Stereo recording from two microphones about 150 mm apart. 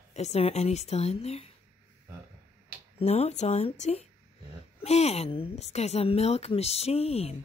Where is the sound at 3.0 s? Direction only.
45° left (ahead or behind).